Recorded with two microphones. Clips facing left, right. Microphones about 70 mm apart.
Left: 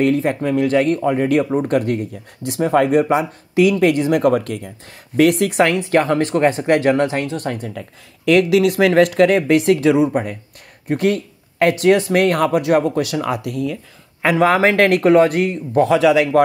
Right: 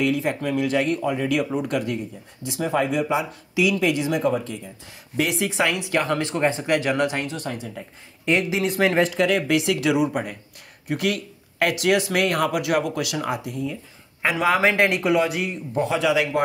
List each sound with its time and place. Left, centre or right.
0.0 s a man's voice: left
5.6 s speech: left
6.3 s speech: left
6.6 s speech: left
8.3 s speech: left
14.3 s speech: left
15.0 s speech: left
15.7 s a man's voice: left